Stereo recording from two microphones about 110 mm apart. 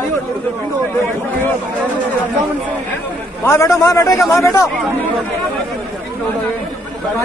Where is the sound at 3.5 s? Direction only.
30° left (ahead or behind).